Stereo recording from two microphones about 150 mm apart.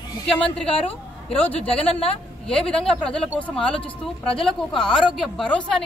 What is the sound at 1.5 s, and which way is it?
A woman's voice, 10° left (ahead or behind).